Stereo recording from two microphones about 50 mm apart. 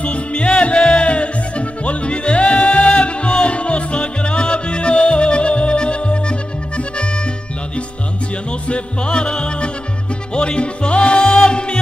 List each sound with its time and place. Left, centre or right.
0.0 s music: left
8.6 s music: left